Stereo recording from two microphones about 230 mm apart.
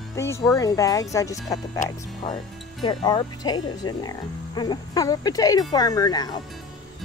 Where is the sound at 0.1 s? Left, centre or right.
Centre.